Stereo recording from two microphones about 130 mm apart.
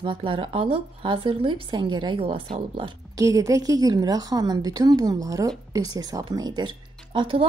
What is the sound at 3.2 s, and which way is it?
A woman's voice, 25° right (ahead or behind).